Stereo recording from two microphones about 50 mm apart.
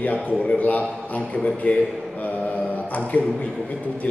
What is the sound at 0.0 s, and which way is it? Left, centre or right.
A man's voice, left.